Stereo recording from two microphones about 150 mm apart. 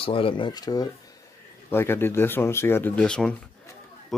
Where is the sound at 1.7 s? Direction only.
15° left (ahead or behind).